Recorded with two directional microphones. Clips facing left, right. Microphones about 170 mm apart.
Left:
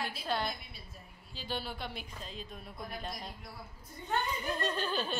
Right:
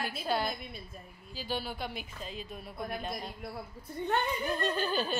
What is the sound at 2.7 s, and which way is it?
A woman's voice, 60° right (ahead or behind).